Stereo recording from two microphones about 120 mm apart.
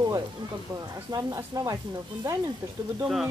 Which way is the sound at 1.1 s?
30° right (ahead or behind).